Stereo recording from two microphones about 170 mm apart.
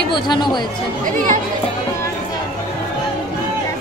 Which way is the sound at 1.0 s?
50° right (ahead or behind).